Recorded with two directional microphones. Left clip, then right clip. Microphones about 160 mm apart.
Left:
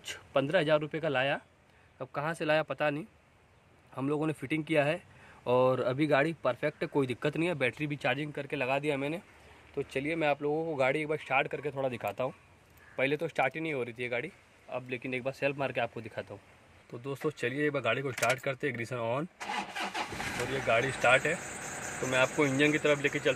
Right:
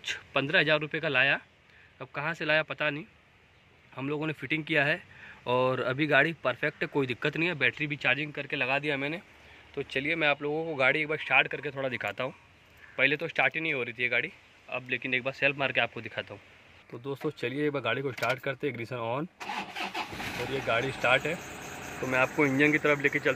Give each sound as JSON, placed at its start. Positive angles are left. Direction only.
{"t": 0.0, "sound": "speech", "side_deg": 10}
{"t": 2.0, "sound": "speech", "side_deg": 25}
{"t": 20.5, "sound": "speech", "side_deg": -5}